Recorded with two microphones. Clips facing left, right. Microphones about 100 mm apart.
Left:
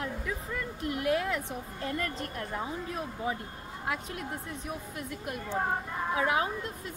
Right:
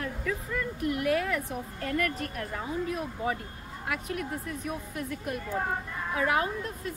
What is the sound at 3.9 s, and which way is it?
Speech, 25° left (ahead or behind).